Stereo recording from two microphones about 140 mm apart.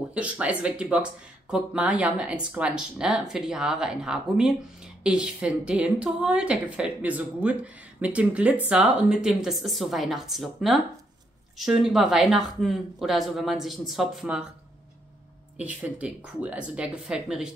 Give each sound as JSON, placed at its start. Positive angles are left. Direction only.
{"t": 0.1, "sound": "speech", "side_deg": -10}
{"t": 15.5, "sound": "speech", "side_deg": -10}